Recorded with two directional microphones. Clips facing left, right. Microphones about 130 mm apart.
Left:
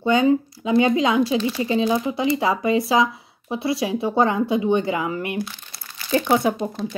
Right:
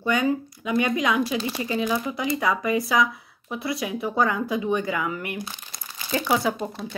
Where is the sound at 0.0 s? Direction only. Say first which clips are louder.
Left 6 dB; 25° left (ahead or behind).